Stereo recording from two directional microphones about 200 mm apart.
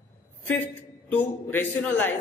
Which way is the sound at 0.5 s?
10° left (ahead or behind).